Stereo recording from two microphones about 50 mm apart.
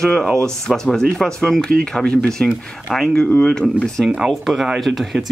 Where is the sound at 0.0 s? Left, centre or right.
Centre.